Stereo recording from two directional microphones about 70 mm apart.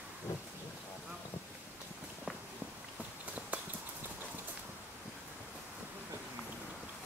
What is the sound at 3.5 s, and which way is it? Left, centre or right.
Clip-clop, right.